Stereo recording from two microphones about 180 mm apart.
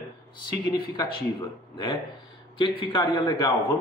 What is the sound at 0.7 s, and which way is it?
Speech, 25° left (ahead or behind).